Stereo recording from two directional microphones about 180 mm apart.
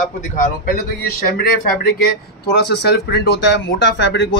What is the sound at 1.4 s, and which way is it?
Speech, 55° left (ahead or behind).